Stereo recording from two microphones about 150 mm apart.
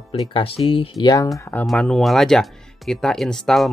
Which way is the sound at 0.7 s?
35° left (ahead or behind).